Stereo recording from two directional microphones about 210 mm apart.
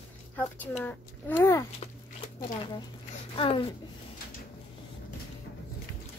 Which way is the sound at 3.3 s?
25° left (ahead or behind).